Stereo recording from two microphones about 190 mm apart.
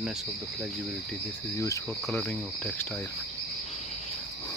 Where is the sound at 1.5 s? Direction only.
15° left (ahead or behind).